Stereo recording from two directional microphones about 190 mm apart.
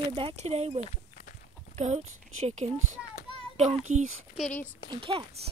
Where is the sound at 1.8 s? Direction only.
35° right (ahead or behind).